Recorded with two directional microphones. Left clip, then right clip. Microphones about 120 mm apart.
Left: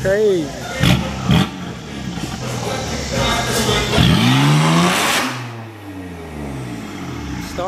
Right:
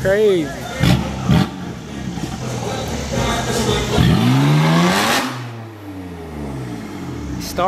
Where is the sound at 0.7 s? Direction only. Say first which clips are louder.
Left 2 dB; 15° left (ahead or behind).